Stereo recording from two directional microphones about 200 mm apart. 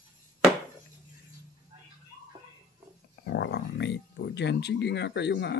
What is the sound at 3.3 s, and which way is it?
Speech, 60° left (ahead or behind).